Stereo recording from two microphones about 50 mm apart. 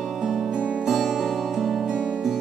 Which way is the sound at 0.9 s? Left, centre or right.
Centre.